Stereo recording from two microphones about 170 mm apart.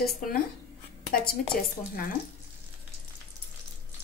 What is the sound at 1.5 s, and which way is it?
Speech, 55° left (ahead or behind).